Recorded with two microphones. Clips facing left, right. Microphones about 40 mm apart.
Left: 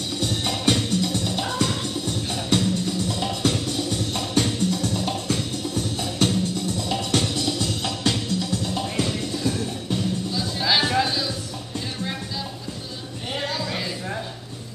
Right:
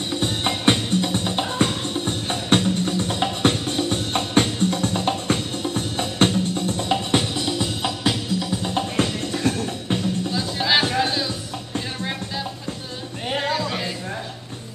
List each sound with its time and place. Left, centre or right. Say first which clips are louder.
0.1 s music: right 2 dB; right; by 8.5 s centre
8.6 s music: right 3 dB; right
10.3 s music: right 2 dB; centre
13.3 s a sound: right 4 dB; right